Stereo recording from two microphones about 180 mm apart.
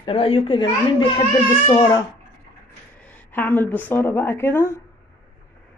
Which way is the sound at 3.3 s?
10° left (ahead or behind).